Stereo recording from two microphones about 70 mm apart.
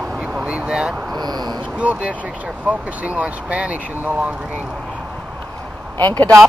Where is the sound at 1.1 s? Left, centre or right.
Right.